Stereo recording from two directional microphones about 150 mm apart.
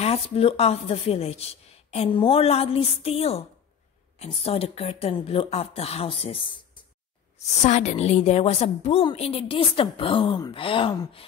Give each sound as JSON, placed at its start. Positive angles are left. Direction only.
{"t": 0.0, "sound": "a woman's voice", "side_deg": 40}
{"t": 7.3, "sound": "a woman's voice", "side_deg": 50}